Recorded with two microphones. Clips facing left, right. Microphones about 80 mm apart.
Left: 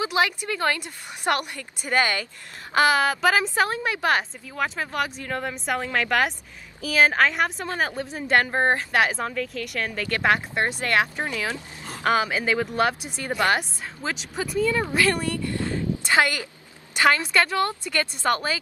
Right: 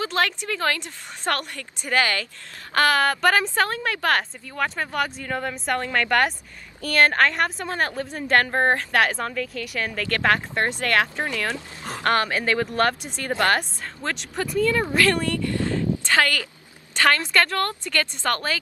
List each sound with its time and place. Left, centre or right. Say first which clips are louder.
0.0 s a woman's voice: left 1 dB; centre
10.0 s a woman's voice: even; centre
11.5 s speech: right 3 dB; right
12.0 s a woman's voice: even; centre
16.0 s a sound: left 2 dB; centre
16.9 s a woman's voice: even; centre